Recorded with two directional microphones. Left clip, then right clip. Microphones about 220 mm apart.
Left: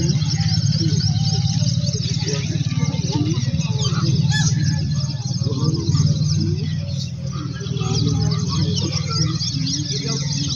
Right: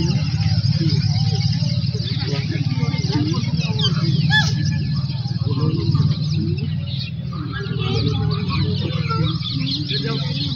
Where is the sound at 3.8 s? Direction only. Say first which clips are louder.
Right 2 dB; 5° left (ahead or behind).